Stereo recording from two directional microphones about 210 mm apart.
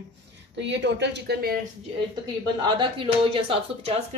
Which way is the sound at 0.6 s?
55° right (ahead or behind).